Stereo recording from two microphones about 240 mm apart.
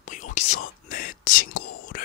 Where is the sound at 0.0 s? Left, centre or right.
Left.